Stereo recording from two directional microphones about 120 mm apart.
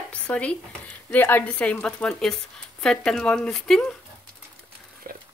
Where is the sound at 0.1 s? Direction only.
10° left (ahead or behind).